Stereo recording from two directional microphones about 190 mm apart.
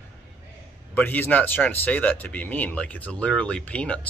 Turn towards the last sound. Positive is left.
turn(degrees=5)  # may be behind; listen again after turning